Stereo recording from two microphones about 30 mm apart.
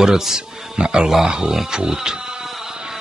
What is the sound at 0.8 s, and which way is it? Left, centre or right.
Speech, right.